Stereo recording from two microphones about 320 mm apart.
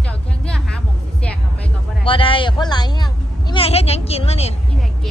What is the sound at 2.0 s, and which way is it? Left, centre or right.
Speech, centre.